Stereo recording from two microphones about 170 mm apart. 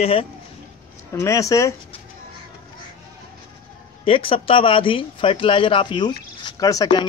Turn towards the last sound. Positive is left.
turn(degrees=25)  # may be behind; listen again after turning